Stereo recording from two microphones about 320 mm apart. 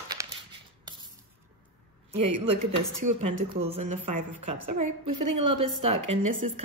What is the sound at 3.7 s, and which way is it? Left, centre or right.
Speech, right.